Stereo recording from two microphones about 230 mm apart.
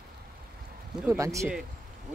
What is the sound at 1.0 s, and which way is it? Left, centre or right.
Speech, centre.